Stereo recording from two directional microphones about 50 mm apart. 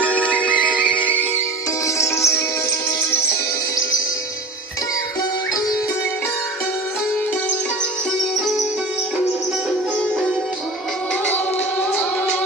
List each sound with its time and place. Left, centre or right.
0.2 s music: left
0.6 s music: right
2.0 s music: left